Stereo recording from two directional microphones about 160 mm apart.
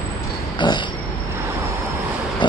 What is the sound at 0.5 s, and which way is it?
Pig, 30° left (ahead or behind).